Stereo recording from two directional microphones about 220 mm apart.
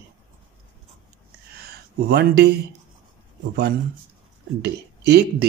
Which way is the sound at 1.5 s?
45° right (ahead or behind).